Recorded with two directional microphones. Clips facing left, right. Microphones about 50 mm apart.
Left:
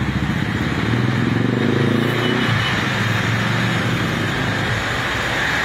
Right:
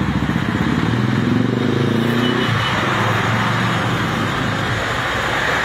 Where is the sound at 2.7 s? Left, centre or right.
Right.